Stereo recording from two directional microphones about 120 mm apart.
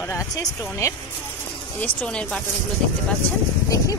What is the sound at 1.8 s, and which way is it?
Speech, 10° left (ahead or behind).